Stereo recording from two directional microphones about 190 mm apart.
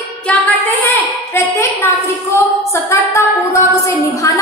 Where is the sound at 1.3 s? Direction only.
10° left (ahead or behind).